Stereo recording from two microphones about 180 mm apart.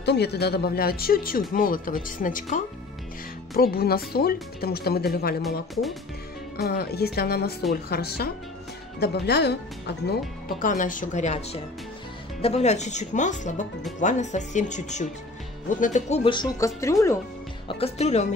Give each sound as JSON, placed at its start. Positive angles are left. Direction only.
{"t": 0.0, "sound": "speech", "side_deg": 70}
{"t": 6.5, "sound": "speech", "side_deg": 60}
{"t": 10.6, "sound": "speech", "side_deg": 45}
{"t": 16.3, "sound": "speech", "side_deg": 20}
{"t": 17.6, "sound": "speech", "side_deg": 35}